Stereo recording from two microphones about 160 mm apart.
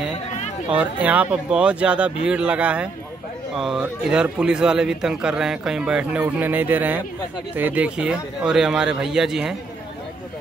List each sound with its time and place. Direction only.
0.7 s a man's voice: 10° right (ahead or behind)